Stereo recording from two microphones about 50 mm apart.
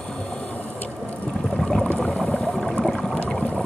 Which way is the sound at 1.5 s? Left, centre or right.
Centre.